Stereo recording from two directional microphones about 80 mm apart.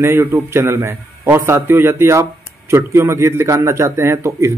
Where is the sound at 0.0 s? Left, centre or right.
Right.